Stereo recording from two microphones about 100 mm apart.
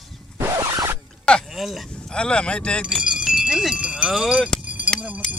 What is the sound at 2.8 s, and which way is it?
Speech, 10° right (ahead or behind).